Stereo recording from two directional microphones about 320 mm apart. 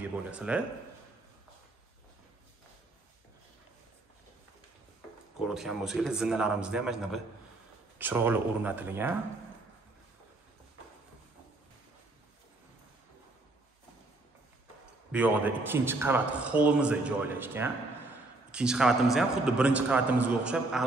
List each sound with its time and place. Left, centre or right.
0.0 s a man's voice: centre
5.4 s a man's voice: centre
15.0 s a man's voice: centre